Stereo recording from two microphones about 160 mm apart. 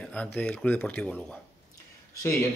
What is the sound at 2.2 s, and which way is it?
Speech, 15° left (ahead or behind).